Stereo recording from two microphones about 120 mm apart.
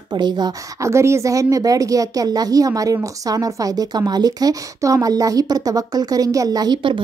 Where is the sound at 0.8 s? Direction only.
25° right (ahead or behind).